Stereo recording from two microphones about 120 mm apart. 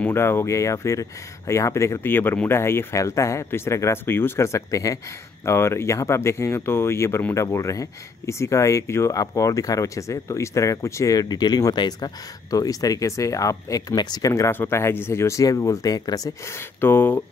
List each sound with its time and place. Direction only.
0.0 s speech: 20° left (ahead or behind)
16.8 s speech: 20° left (ahead or behind)